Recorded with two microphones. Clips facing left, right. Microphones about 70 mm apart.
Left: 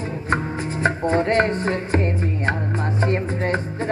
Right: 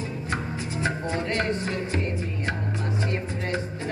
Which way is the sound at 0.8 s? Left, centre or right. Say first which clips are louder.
Left 9 dB; left.